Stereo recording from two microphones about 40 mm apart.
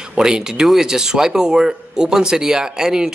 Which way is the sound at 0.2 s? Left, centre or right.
Centre.